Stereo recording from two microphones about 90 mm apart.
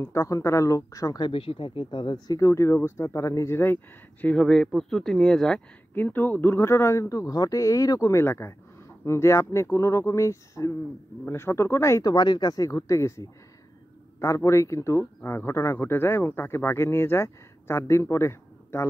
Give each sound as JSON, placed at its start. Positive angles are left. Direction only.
{"t": 0.0, "sound": "speech", "side_deg": 35}
{"t": 1.2, "sound": "speech", "side_deg": 85}
{"t": 4.4, "sound": "speech", "side_deg": 5}
{"t": 5.9, "sound": "speech", "side_deg": 20}
{"t": 12.0, "sound": "speech", "side_deg": 50}